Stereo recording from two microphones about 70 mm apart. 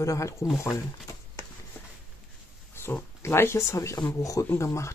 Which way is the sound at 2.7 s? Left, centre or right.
Left.